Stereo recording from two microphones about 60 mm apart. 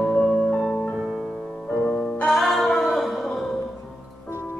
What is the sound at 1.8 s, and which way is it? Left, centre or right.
Music, left.